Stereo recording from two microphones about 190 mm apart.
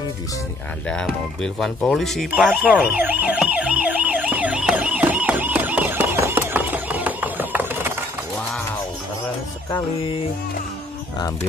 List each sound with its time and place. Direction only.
0.8 s music: 5° left (ahead or behind)
9.7 s music: 25° left (ahead or behind)